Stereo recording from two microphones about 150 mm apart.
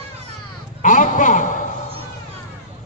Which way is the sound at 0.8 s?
60° left (ahead or behind).